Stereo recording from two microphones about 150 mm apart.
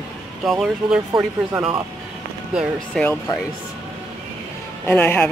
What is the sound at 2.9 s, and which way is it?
Speech, 5° left (ahead or behind).